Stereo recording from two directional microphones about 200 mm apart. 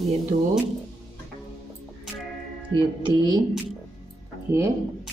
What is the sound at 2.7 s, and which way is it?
Speech, 20° right (ahead or behind).